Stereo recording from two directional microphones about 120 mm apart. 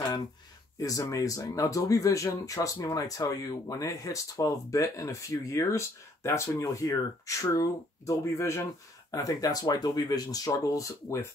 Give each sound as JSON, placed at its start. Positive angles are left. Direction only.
{"t": 0.7, "sound": "speech", "side_deg": 30}